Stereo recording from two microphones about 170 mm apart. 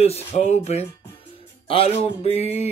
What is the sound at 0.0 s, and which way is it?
Speech, 40° left (ahead or behind).